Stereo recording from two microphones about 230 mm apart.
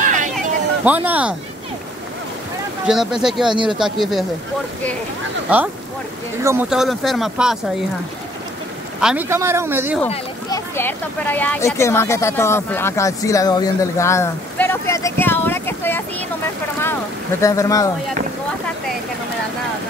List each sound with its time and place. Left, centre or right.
0.0 s a sound: right
0.8 s speech: centre
2.9 s speech: centre
6.4 s speech: centre
9.0 s speech: centre
10.5 s speech: centre
17.4 s speech: centre